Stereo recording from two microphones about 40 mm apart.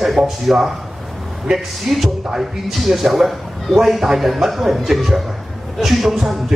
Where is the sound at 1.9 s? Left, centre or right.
Centre.